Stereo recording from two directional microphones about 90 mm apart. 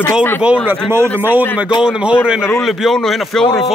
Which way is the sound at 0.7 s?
25° right (ahead or behind).